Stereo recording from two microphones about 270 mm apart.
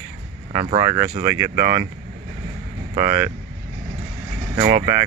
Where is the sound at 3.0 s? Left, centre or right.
Centre.